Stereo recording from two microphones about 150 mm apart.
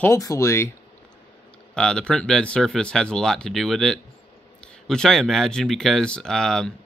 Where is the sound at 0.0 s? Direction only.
20° left (ahead or behind).